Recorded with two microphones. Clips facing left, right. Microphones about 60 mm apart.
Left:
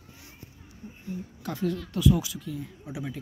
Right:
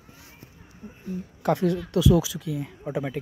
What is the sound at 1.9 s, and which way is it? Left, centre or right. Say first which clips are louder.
Speech: right 3 dB; right.